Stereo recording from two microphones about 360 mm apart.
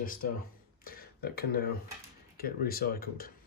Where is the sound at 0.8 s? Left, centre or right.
Left.